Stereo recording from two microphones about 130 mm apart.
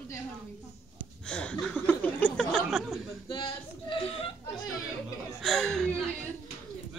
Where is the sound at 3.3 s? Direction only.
40° left (ahead or behind).